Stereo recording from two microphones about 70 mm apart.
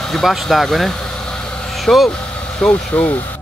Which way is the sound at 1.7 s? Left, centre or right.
Centre.